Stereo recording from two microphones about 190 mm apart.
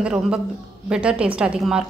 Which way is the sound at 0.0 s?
5° right (ahead or behind).